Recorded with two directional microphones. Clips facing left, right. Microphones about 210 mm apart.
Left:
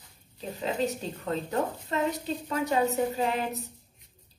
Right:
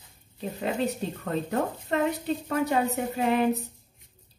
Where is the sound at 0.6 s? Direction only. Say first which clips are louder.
Right 1 dB; 55° right (ahead or behind).